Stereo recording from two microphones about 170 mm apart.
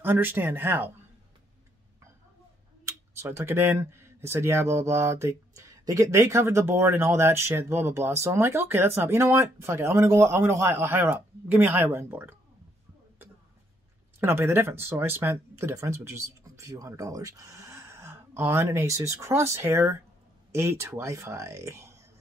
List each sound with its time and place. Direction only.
0.0 s speech: 10° right (ahead or behind)
2.8 s speech: 15° right (ahead or behind)
14.2 s speech: 15° right (ahead or behind)